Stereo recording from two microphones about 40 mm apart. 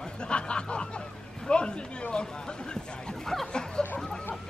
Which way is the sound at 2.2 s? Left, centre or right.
Left.